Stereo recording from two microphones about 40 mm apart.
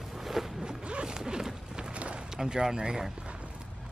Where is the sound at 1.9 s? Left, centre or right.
Right.